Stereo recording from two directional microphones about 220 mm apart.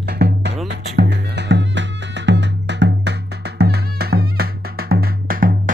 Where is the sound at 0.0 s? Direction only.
50° right (ahead or behind).